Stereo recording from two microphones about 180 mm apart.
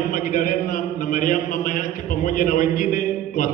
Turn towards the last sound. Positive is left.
turn(degrees=50)  # may be behind; listen again after turning